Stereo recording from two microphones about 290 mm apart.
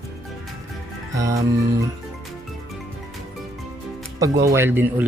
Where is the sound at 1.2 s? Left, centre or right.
Centre.